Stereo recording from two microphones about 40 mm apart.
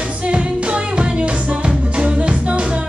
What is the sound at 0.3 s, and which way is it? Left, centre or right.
Music, right.